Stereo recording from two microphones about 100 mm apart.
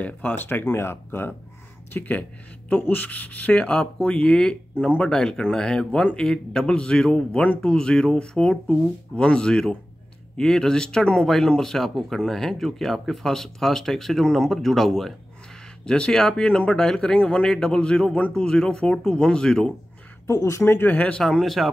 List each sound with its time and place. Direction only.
0.0 s speech: 15° left (ahead or behind)
20.2 s speech: 30° left (ahead or behind); by 21.2 s 15° left (ahead or behind)
21.2 s speech: 5° left (ahead or behind)